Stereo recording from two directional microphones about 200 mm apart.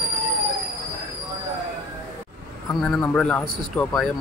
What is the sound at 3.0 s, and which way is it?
A man's voice, 5° left (ahead or behind).